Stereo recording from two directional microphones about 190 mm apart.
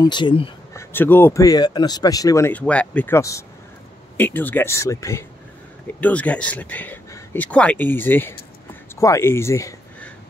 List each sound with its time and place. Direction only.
0.0 s speech: 25° left (ahead or behind)
0.7 s speech: 10° left (ahead or behind)